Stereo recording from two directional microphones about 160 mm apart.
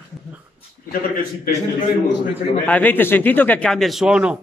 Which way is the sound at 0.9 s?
65° left (ahead or behind).